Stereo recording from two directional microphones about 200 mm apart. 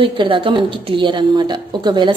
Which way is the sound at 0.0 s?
25° right (ahead or behind).